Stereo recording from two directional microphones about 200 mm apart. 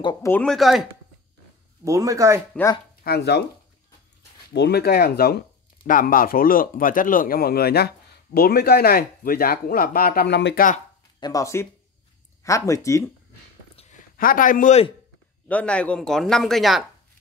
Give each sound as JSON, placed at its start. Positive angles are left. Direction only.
{"t": 0.0, "sound": "speech", "side_deg": 15}
{"t": 1.9, "sound": "speech", "side_deg": -15}
{"t": 3.0, "sound": "speech", "side_deg": 55}
{"t": 4.6, "sound": "speech", "side_deg": 55}
{"t": 11.1, "sound": "speech", "side_deg": 20}
{"t": 13.7, "sound": "a sound", "side_deg": 40}
{"t": 15.4, "sound": "speech", "side_deg": 5}